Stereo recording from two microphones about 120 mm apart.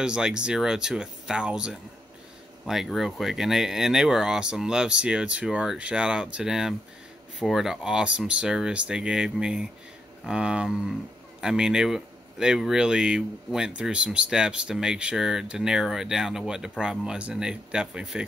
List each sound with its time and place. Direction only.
0.0 s speech: 5° right (ahead or behind)